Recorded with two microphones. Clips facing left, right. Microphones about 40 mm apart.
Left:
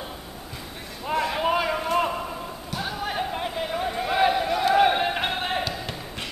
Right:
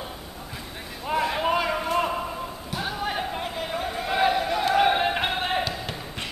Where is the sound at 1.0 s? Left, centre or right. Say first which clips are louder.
Even; centre.